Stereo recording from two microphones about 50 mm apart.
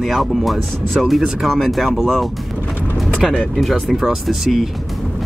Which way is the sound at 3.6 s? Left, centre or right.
Centre.